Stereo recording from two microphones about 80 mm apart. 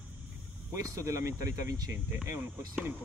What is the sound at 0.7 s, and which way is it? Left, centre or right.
Speech, right.